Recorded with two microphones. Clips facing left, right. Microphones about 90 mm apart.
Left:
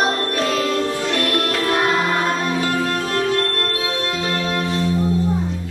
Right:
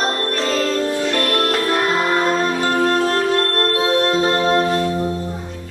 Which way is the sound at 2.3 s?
35° right (ahead or behind).